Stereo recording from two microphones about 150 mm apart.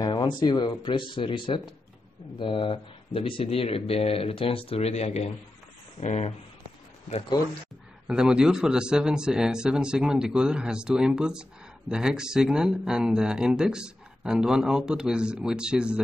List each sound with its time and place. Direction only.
0.0 s speech: 30° left (ahead or behind); by 6.3 s 50° left (ahead or behind)
8.1 s speech: 5° right (ahead or behind)